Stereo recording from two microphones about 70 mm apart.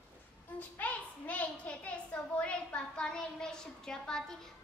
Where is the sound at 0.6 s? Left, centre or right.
Left.